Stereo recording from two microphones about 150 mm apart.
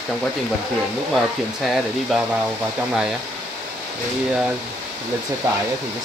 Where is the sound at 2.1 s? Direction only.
5° right (ahead or behind).